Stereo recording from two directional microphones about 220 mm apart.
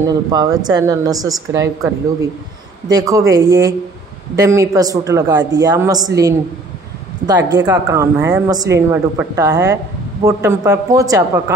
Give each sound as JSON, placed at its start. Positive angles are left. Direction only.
{"t": 0.1, "sound": "a woman's voice", "side_deg": -20}
{"t": 2.9, "sound": "a woman's voice", "side_deg": -15}